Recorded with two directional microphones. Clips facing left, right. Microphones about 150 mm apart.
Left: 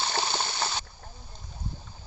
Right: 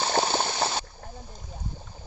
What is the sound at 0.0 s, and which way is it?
Water, 45° right (ahead or behind).